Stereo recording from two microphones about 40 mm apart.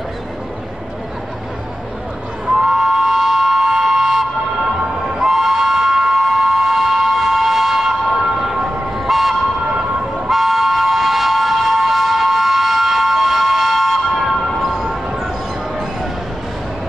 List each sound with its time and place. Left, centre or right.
2.4 s train: centre
8.9 s toot: centre
9.7 s vehicle: right
10.3 s train: centre
14.9 s a sound: centre